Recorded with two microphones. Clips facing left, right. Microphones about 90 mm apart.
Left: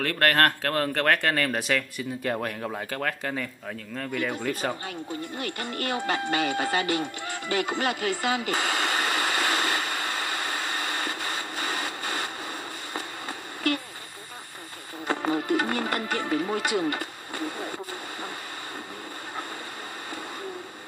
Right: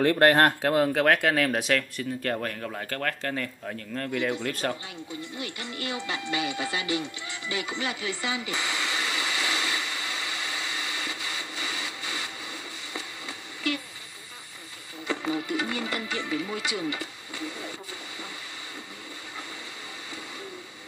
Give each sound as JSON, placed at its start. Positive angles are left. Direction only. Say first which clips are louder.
{"t": 0.0, "sound": "speech", "louder": "right 3 dB", "side_deg": -20}
{"t": 2.3, "sound": "speech", "louder": "left 1 dB", "side_deg": 20}
{"t": 5.4, "sound": "music", "louder": "left 4 dB", "side_deg": 45}
{"t": 13.7, "sound": "a sound", "louder": "left 3 dB", "side_deg": 50}
{"t": 15.0, "sound": "music", "louder": "left 4 dB", "side_deg": 50}